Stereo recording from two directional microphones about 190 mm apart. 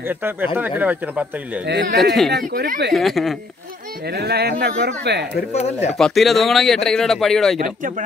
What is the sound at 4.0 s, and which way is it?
Speech, 60° right (ahead or behind).